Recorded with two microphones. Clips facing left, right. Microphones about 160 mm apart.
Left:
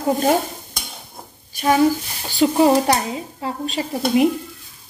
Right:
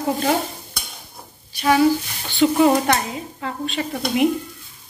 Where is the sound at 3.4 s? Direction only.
40° left (ahead or behind).